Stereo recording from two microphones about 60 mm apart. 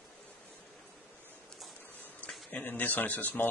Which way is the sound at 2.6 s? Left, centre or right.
Left.